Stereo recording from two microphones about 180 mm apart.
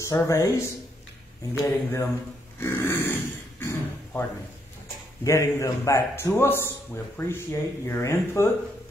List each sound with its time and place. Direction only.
0.0 s a man's voice: 15° left (ahead or behind)
2.6 s a sound: 15° left (ahead or behind)
5.2 s a man's voice: 15° left (ahead or behind)